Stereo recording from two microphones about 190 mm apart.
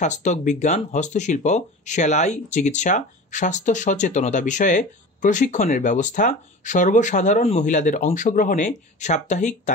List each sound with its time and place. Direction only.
0.0 s speech: 40° left (ahead or behind)